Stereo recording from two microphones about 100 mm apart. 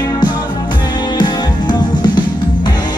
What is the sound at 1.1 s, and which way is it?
Music, 45° left (ahead or behind).